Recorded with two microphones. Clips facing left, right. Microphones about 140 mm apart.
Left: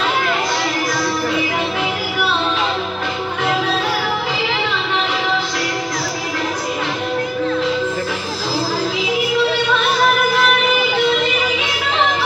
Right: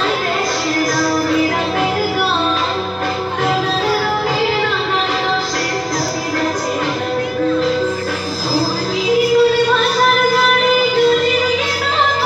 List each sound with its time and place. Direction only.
9.1 s music: 40° right (ahead or behind)